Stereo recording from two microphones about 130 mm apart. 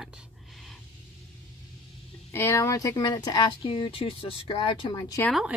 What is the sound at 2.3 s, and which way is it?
Speech, 20° left (ahead or behind).